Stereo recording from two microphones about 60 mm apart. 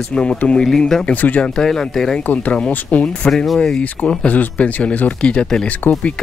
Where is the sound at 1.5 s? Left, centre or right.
Centre.